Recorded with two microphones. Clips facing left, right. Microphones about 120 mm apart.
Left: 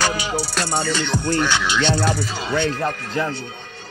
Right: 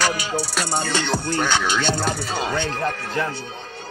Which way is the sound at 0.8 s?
50° right (ahead or behind).